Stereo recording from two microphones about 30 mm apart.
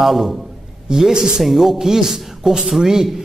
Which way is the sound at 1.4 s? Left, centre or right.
Centre.